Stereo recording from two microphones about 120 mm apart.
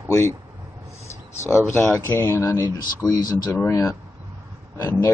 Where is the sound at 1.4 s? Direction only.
20° left (ahead or behind).